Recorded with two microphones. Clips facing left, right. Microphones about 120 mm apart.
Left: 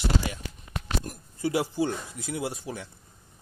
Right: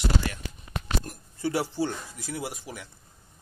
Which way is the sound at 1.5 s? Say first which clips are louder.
Left 1 dB; 20° left (ahead or behind).